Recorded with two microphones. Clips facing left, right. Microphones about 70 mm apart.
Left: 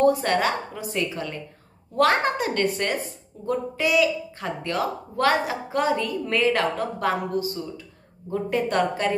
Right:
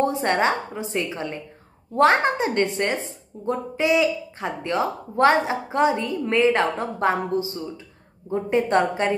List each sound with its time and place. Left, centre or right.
0.0 s a woman's voice: right